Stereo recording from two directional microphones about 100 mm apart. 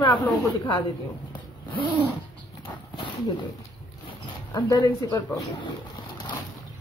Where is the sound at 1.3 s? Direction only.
50° left (ahead or behind).